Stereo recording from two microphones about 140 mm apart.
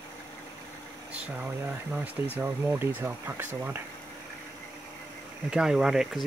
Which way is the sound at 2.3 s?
15° right (ahead or behind).